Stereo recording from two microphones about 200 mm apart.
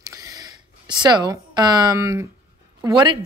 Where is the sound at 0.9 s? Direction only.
20° right (ahead or behind).